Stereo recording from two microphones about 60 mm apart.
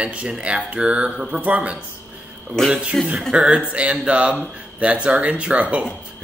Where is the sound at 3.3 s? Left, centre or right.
Centre.